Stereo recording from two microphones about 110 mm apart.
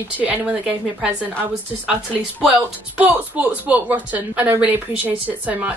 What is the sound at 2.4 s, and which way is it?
A woman's voice, 10° right (ahead or behind).